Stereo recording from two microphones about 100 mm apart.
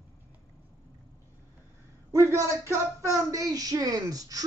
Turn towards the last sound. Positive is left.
turn(degrees=-40)  # may be behind; listen again after turning